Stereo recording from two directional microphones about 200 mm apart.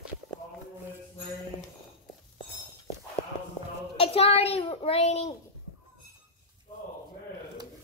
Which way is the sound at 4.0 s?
30° left (ahead or behind).